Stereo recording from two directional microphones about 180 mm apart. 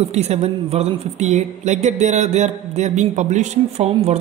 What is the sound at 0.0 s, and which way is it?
A man's voice, 35° right (ahead or behind).